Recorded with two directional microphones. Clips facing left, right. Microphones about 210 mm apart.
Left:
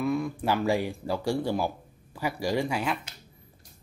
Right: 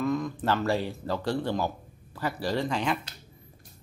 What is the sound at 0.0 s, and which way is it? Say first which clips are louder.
Speech: even; 10° left (ahead or behind).